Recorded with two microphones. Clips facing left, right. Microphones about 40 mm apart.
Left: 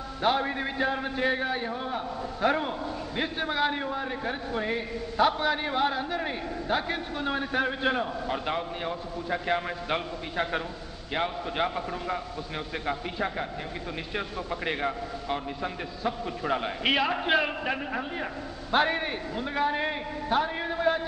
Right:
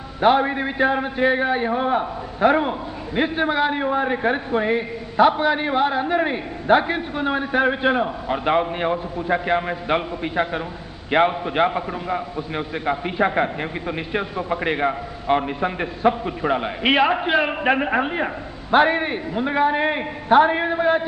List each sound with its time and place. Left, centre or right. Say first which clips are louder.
0.2 s a man's voice: right 9 dB; right
2.4 s a man's voice: right 9 dB; right
3.8 s a man's voice: right 11 dB; right
8.5 s a man's voice: right 11 dB; right
11.1 s a man's voice: right 12 dB; right
11.4 s a man's voice: right 9 dB; right
13.9 s a man's voice: right 7 dB; right
15.3 s a man's voice: right 13 dB; right
16.3 s a man's voice: right 7 dB; right
17.6 s a man's voice: right 11 dB; right
18.2 s a man's voice: right 8 dB; right
20.0 s a man's voice: right 11 dB; right